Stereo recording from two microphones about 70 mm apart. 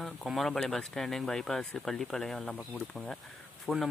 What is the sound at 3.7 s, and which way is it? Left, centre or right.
Speech, centre.